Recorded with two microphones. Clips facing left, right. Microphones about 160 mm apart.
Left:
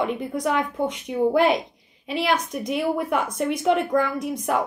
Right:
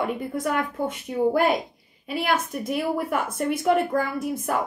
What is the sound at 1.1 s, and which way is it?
Speech, 5° left (ahead or behind).